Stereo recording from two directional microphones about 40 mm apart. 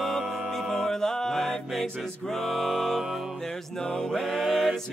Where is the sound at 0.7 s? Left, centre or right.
Centre.